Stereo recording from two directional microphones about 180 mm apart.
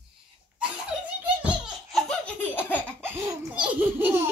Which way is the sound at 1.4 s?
5° right (ahead or behind).